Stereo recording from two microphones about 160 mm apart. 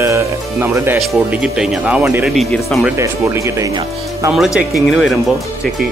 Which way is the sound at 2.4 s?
Centre (ahead or behind).